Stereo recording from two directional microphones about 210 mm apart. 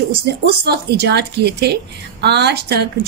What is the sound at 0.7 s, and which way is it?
A woman's voice, 50° right (ahead or behind).